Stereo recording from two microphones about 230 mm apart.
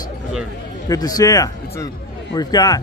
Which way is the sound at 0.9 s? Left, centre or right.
Centre.